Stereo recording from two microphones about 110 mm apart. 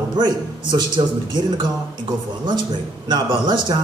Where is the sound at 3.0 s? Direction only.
40° right (ahead or behind).